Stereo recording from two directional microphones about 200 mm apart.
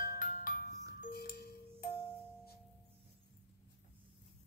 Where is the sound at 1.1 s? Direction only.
50° left (ahead or behind).